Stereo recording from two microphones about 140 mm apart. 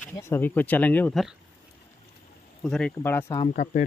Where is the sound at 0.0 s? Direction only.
15° left (ahead or behind).